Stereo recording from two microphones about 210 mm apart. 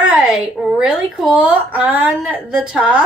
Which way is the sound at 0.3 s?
Centre (ahead or behind).